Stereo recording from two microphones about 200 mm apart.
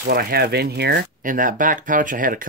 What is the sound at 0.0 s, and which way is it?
Speech, 50° right (ahead or behind).